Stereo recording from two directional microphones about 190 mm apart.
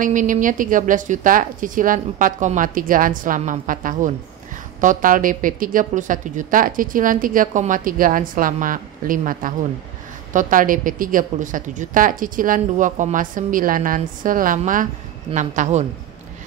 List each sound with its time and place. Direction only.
0.0 s a woman's voice: 45° right (ahead or behind)